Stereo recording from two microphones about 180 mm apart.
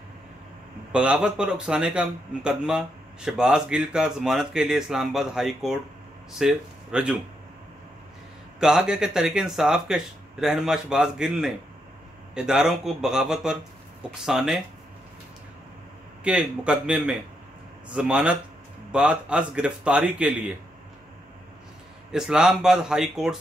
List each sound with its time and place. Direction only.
0.9 s speech: 5° right (ahead or behind)
8.5 s speech: 5° right (ahead or behind)
16.3 s speech: 5° right (ahead or behind)
22.1 s speech: 5° right (ahead or behind)